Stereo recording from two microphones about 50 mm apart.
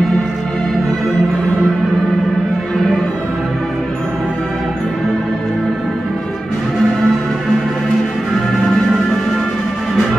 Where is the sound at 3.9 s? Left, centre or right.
Centre.